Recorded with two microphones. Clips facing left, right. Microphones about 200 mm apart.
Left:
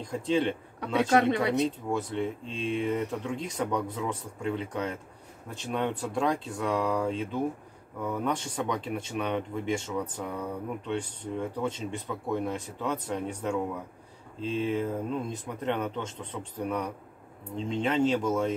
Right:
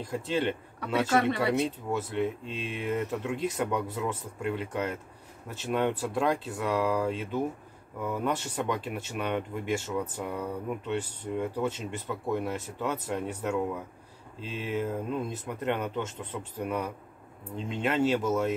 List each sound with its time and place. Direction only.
0.0 s speech: 5° right (ahead or behind)
0.9 s speech: 20° left (ahead or behind)
1.9 s speech: 5° right (ahead or behind)